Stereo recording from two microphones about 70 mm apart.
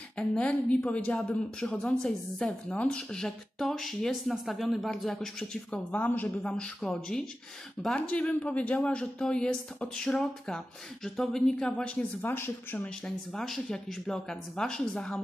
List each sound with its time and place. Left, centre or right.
0.2 s a woman's voice: centre
6.4 s a woman's voice: centre
12.2 s speech: left
13.0 s a woman's voice: centre